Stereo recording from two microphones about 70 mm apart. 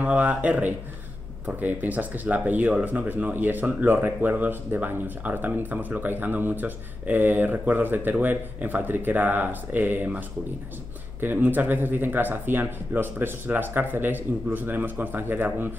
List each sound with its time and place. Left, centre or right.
0.0 s speech: right